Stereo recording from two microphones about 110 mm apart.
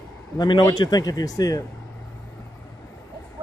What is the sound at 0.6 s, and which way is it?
Speech, 35° left (ahead or behind).